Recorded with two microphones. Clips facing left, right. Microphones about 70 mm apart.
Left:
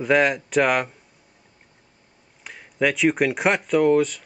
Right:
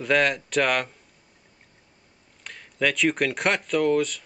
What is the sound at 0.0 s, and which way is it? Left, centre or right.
Speech, centre.